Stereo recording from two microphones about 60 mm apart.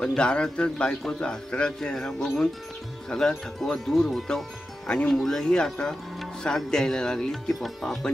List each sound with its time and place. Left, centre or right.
0.0 s speech: centre
4.8 s speech: centre